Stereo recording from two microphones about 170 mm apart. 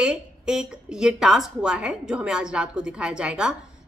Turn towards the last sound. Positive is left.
turn(degrees=-5)  # may be behind; listen again after turning